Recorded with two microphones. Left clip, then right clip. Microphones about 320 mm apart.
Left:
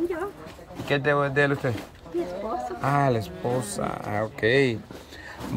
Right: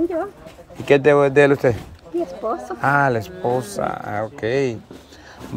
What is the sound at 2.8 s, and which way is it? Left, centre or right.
Speech, centre.